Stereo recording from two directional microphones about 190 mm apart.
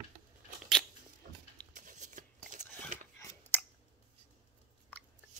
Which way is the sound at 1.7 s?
40° right (ahead or behind).